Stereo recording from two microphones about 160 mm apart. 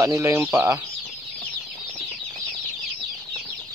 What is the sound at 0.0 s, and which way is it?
Speech, 20° right (ahead or behind).